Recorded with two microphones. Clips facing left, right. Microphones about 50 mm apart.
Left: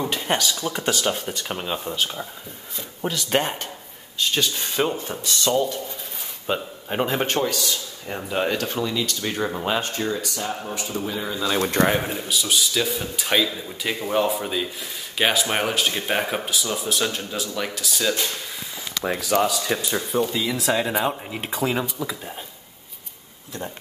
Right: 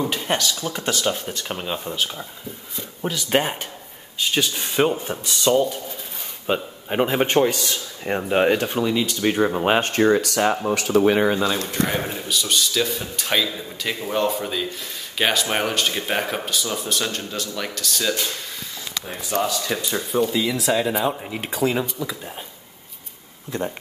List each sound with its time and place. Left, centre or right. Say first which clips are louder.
0.0 s speech: right 1 dB; centre
7.4 s a man's voice: right 3 dB; right
9.7 s speech: right 9 dB; right
11.9 s speech: left 1 dB; centre
19.0 s speech: left 7 dB; left
19.5 s speech: even; centre